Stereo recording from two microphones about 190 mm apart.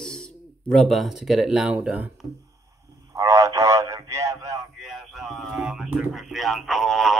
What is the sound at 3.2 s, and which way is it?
Radio, 15° right (ahead or behind).